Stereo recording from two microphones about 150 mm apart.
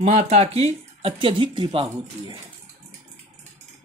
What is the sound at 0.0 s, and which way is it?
Speech, 45° right (ahead or behind).